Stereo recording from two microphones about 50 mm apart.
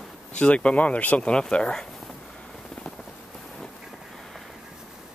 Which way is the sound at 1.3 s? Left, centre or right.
Centre.